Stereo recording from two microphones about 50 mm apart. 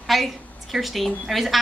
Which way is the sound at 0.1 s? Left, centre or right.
Centre.